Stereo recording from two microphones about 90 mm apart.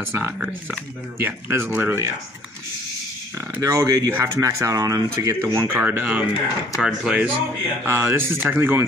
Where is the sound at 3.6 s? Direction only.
35° right (ahead or behind).